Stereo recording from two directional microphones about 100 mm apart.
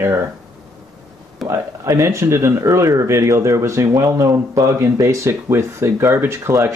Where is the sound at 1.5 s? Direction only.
30° right (ahead or behind).